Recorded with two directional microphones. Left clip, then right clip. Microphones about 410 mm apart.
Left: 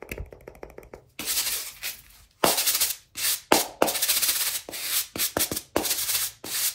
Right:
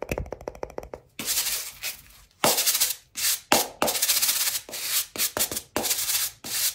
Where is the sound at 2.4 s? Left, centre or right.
Centre.